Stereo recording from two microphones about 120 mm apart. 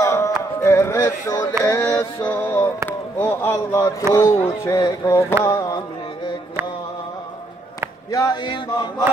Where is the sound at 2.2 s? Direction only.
15° left (ahead or behind).